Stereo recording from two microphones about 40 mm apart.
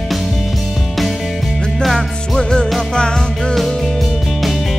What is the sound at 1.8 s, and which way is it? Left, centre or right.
Music, centre.